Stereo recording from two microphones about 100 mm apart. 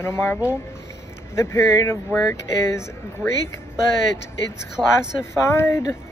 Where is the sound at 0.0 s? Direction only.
25° left (ahead or behind).